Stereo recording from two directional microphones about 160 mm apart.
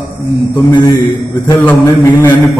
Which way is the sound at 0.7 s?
25° left (ahead or behind).